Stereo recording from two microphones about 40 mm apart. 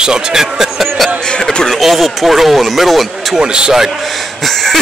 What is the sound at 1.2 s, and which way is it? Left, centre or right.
Speech, left.